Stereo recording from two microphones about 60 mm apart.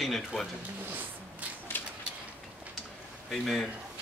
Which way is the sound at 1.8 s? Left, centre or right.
Left.